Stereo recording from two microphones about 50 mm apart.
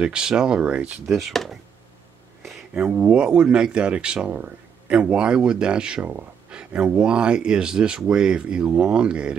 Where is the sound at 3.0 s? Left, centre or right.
Centre.